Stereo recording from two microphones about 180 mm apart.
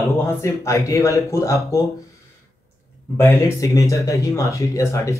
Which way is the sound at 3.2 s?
15° left (ahead or behind).